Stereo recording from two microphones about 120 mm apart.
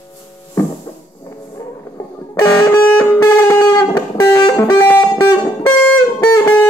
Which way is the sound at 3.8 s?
20° left (ahead or behind).